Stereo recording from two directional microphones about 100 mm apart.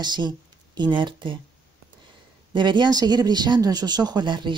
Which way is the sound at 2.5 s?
50° right (ahead or behind).